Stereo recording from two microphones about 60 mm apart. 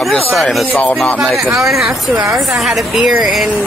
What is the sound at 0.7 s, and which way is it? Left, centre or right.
Speech, left.